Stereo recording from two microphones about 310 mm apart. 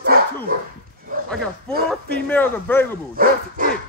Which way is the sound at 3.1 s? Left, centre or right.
Right.